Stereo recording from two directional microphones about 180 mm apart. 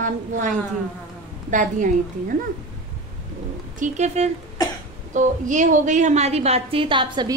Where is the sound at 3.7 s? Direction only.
40° right (ahead or behind).